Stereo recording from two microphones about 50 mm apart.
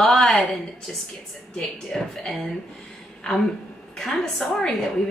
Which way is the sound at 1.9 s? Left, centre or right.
Centre.